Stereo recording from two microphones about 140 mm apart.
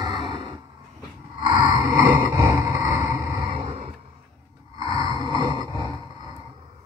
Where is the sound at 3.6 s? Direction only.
50° right (ahead or behind).